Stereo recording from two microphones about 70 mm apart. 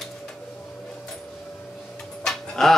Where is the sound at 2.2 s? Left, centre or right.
Centre.